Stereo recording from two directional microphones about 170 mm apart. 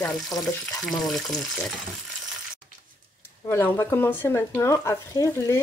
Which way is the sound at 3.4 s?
15° left (ahead or behind).